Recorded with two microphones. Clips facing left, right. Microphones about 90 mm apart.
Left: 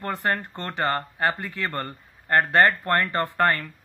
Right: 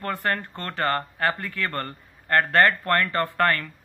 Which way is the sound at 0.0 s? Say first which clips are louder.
Left 1 dB; 20° left (ahead or behind).